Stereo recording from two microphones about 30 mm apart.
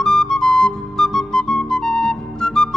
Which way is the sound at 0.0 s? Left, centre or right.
Left.